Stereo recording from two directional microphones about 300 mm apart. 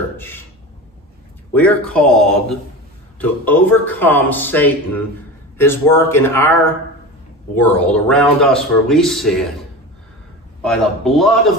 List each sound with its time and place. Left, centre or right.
0.2 s a sound: centre
1.5 s a man's voice: centre
10.6 s speech: centre